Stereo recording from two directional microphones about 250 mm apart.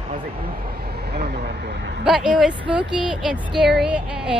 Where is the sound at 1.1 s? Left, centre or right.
Right.